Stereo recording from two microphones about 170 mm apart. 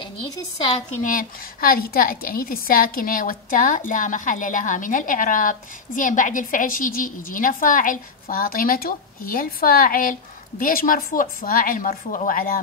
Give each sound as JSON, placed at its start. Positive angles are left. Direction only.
{"t": 1.0, "sound": "a woman's voice", "side_deg": 55}